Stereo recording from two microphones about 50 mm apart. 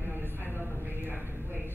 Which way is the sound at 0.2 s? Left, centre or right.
Right.